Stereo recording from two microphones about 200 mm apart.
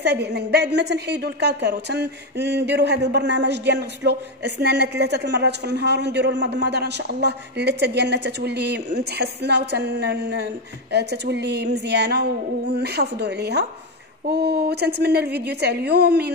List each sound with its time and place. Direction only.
0.0 s a woman's voice: 55° right (ahead or behind)